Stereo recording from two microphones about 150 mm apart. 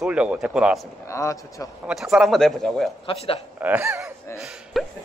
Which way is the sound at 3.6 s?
10° right (ahead or behind).